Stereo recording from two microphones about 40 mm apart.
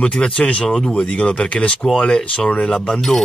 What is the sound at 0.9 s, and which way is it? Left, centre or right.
Speech, left.